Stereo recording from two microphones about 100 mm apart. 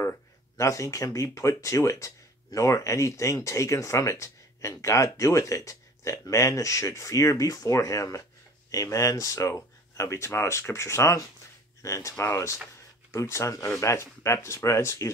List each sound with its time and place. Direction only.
0.6 s speech: 35° left (ahead or behind)